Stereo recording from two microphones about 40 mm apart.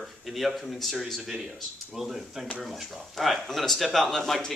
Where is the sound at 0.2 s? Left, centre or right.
Centre.